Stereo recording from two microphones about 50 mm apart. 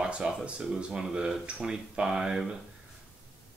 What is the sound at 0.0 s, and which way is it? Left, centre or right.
Speech, centre.